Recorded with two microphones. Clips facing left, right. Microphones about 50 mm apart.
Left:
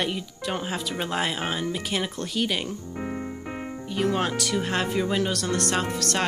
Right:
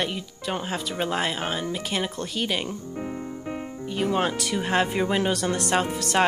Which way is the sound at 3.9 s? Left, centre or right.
Centre.